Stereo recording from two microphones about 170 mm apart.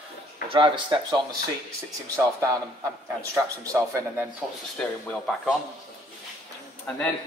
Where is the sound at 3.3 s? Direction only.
20° right (ahead or behind).